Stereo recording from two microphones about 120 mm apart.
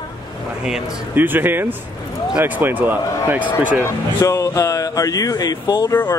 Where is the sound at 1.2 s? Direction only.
15° right (ahead or behind).